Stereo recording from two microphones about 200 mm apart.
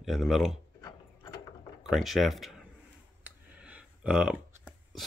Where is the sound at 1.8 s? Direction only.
Centre (ahead or behind).